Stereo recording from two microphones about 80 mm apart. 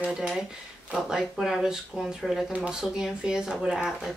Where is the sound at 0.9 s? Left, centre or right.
Centre.